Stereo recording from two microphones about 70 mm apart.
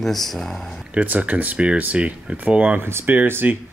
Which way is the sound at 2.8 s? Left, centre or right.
Right.